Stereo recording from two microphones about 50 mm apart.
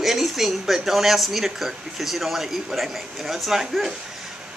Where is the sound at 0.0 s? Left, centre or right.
Centre.